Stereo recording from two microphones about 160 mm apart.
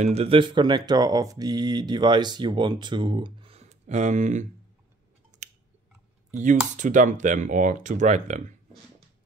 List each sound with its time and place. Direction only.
0.0 s speech: 40° right (ahead or behind)
6.4 s speech: 50° right (ahead or behind)